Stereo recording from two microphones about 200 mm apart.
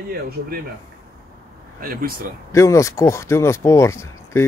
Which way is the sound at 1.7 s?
45° right (ahead or behind).